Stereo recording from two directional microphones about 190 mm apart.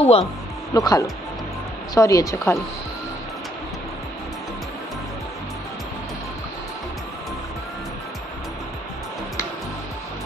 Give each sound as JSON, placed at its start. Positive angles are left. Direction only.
{"t": 0.0, "sound": "speech", "side_deg": 30}
{"t": 0.7, "sound": "speech", "side_deg": 20}